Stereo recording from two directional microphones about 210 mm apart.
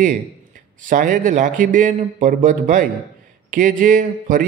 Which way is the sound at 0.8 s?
40° right (ahead or behind).